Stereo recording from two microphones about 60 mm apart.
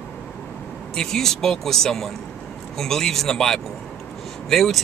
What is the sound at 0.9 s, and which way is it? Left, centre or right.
Speech, centre.